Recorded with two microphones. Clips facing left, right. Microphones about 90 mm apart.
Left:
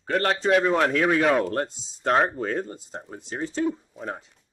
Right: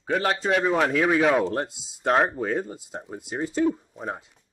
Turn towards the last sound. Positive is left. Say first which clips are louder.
# right 1 dB
turn(degrees=-5)  # may be behind; listen again after turning